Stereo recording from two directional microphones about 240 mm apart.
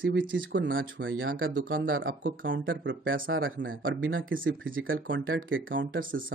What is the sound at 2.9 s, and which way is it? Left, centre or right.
Speech, right.